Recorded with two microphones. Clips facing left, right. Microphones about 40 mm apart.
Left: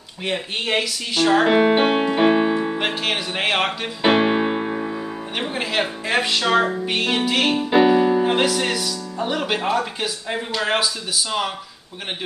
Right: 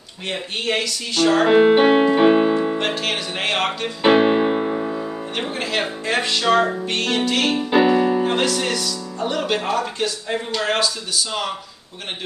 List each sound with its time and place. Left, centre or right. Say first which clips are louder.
0.3 s speech: even; centre
2.8 s music: even; centre